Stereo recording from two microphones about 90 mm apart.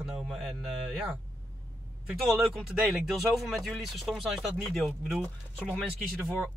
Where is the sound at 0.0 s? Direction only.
10° right (ahead or behind).